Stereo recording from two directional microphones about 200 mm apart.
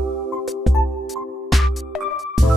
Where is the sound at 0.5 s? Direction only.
Centre (ahead or behind).